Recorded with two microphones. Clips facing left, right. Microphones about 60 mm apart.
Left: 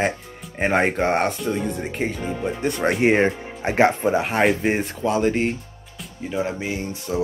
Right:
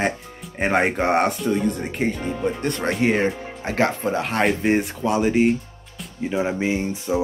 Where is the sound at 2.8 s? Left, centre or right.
Left; by 5.5 s centre.